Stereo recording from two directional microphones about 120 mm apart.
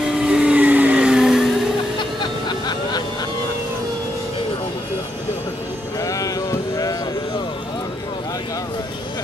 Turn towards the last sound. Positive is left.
turn(degrees=30)  # may be behind; listen again after turning